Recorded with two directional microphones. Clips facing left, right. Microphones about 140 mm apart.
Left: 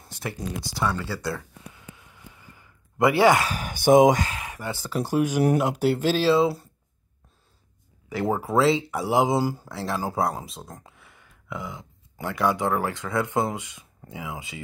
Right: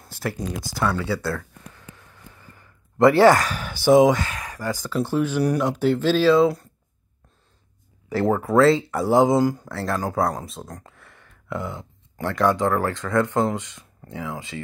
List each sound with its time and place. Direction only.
0.0 s a sound: centre (ahead or behind)
0.7 s speech: centre (ahead or behind)
1.7 s a sound: 15° left (ahead or behind)
3.4 s a sound: 40° left (ahead or behind)
4.1 s speech: 35° left (ahead or behind)
4.5 s speech: 25° left (ahead or behind)
5.1 s speech: 10° left (ahead or behind)
6.2 s speech: 30° left (ahead or behind)
8.1 s speech: 15° left (ahead or behind)
8.5 s speech: centre (ahead or behind)